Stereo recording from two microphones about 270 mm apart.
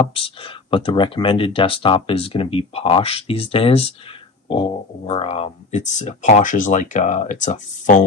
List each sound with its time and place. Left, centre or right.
0.0 s speech: left